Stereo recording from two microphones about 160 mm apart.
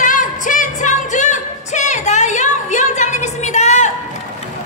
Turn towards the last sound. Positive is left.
turn(degrees=50)  # may be behind; listen again after turning